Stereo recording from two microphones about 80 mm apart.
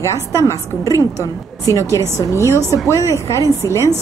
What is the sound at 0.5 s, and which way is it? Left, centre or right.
A woman's voice, left.